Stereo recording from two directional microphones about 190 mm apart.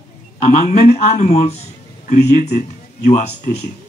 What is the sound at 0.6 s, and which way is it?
Speech, 35° left (ahead or behind).